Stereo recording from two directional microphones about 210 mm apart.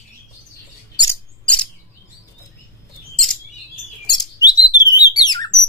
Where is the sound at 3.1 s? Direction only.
Centre (ahead or behind).